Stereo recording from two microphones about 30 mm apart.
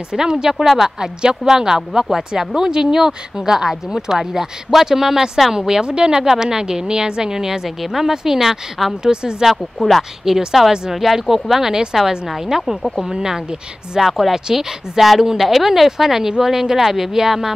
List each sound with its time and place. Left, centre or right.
0.1 s a woman's voice: right
0.8 s a woman's voice: right
6.2 s a woman's voice: centre
9.0 s a woman's voice: right
9.5 s speech: centre
10.3 s a woman's voice: centre
13.9 s speech: centre
14.3 s a woman's voice: centre
15.0 s speech: centre